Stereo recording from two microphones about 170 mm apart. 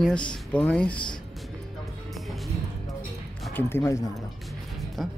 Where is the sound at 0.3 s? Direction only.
5° left (ahead or behind).